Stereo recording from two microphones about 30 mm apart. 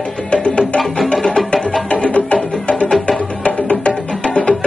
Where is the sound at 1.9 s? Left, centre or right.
Left.